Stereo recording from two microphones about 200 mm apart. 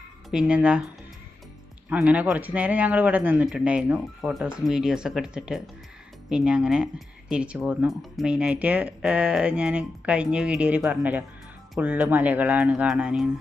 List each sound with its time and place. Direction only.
0.3 s speech: 5° right (ahead or behind)
1.9 s speech: 5° right (ahead or behind)